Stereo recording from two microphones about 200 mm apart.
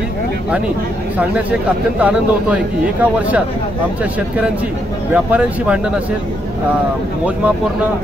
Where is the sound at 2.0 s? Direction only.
5° right (ahead or behind).